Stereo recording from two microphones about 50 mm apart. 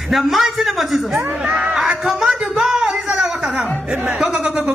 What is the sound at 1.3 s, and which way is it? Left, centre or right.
Speech, centre.